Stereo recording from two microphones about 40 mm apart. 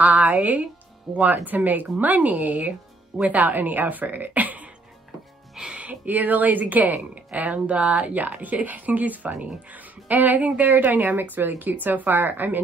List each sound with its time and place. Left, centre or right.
0.0 s speech: right
5.8 s speech: right
7.5 s speech: right